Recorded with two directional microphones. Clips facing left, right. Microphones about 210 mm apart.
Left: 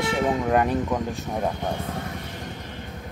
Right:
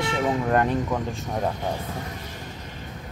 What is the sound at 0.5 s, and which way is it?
Speech, 5° left (ahead or behind).